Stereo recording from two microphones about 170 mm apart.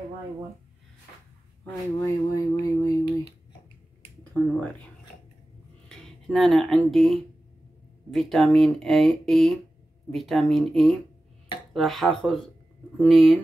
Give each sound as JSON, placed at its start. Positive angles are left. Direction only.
{"t": 1.6, "sound": "speech", "side_deg": 20}
{"t": 4.2, "sound": "speech", "side_deg": 10}
{"t": 5.9, "sound": "speech", "side_deg": 5}